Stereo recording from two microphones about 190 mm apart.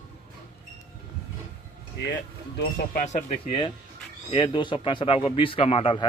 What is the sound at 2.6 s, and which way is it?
Speech, 55° left (ahead or behind).